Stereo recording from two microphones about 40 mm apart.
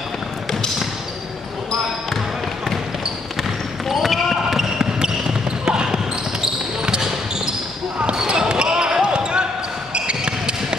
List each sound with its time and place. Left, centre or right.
3.9 s basketball bounce: centre
5.7 s a sound: centre
8.3 s basketball bounce: right